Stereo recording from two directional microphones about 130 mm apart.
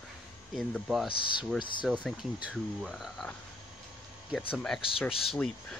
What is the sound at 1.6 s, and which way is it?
Speech, 40° left (ahead or behind).